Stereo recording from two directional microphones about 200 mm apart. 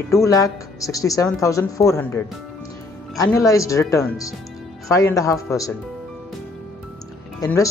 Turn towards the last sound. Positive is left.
turn(degrees=15)  # may be behind; listen again after turning